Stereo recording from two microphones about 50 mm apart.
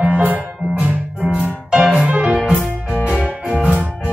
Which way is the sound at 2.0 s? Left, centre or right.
Right.